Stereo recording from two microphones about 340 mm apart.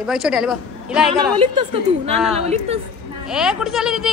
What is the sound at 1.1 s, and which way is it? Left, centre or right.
A woman's voice, centre.